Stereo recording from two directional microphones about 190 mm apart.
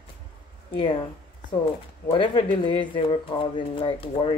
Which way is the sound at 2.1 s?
25° left (ahead or behind).